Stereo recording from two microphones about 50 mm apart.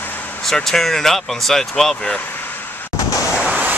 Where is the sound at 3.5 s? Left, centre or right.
Right.